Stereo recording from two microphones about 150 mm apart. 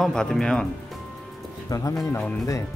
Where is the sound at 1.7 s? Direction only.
20° left (ahead or behind).